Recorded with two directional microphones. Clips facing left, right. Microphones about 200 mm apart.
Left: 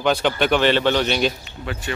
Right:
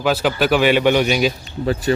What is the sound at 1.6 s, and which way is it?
Speech, 35° right (ahead or behind).